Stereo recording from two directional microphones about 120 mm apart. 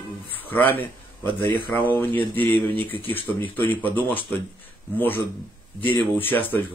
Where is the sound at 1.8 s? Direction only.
15° left (ahead or behind).